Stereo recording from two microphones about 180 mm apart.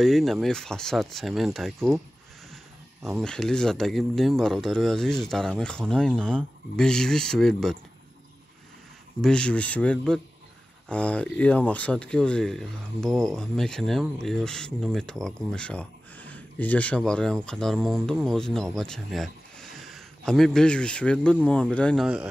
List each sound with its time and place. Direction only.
0.0 s speech: centre (ahead or behind)
3.2 s speech: 5° left (ahead or behind)
9.2 s speech: 5° left (ahead or behind)